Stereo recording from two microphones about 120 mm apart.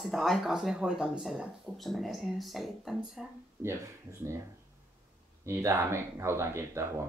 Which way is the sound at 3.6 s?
25° right (ahead or behind).